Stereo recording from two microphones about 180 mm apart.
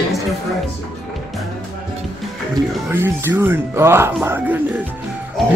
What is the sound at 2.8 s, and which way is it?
Speech, 10° right (ahead or behind).